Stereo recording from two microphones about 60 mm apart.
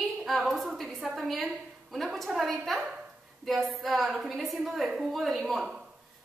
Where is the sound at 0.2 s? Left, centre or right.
Centre.